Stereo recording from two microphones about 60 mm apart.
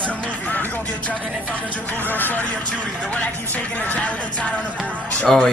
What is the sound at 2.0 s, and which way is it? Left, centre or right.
Speech, left.